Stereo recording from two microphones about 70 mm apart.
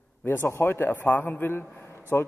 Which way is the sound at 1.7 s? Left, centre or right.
Left.